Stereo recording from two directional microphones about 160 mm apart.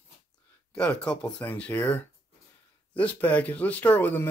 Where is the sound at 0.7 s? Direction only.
5° left (ahead or behind).